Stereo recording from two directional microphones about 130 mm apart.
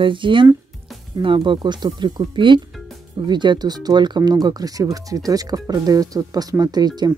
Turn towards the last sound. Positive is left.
turn(degrees=-30)  # may be behind; listen again after turning